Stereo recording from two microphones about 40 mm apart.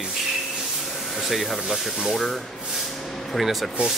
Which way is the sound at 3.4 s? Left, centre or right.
Centre.